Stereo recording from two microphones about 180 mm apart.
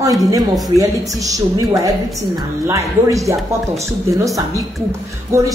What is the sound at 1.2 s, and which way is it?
Speech, 20° right (ahead or behind).